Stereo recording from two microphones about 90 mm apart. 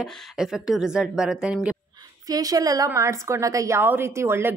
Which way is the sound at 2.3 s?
40° right (ahead or behind).